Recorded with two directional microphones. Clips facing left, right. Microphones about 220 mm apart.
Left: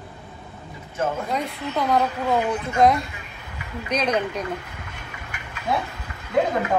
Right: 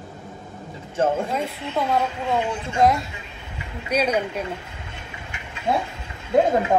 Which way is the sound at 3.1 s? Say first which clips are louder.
Right 1 dB; 25° right (ahead or behind).